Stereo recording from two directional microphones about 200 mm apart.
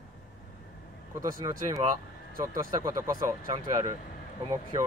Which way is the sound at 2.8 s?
15° right (ahead or behind).